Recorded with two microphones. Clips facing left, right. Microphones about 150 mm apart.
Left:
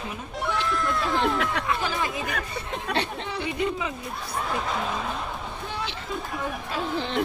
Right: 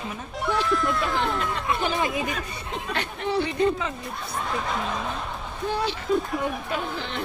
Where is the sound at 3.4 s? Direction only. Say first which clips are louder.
Right 4 dB; 10° left (ahead or behind).